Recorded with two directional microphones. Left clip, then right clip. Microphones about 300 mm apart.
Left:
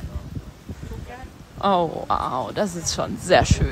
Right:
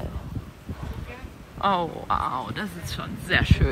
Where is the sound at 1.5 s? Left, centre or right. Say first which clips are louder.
Left 4 dB; centre.